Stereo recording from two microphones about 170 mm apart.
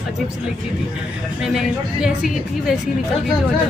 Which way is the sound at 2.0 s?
5° right (ahead or behind).